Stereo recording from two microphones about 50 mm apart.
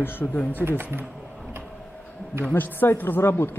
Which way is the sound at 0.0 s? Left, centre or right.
Left.